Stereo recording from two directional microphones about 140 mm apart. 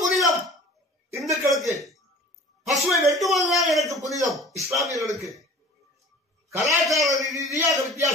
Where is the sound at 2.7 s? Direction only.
Centre (ahead or behind).